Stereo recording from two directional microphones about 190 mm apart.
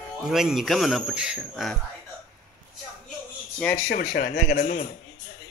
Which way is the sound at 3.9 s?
55° left (ahead or behind).